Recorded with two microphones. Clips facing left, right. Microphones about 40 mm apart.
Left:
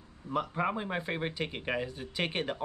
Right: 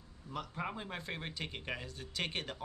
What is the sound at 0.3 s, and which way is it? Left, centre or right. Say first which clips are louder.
Speech: left 9 dB; left.